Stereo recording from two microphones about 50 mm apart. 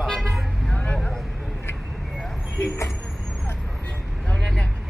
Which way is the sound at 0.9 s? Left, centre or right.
Centre.